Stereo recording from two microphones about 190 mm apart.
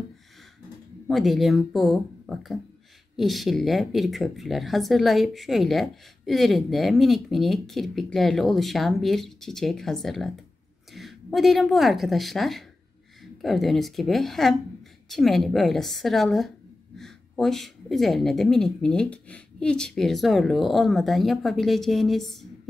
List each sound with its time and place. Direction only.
1.0 s a woman's voice: centre (ahead or behind)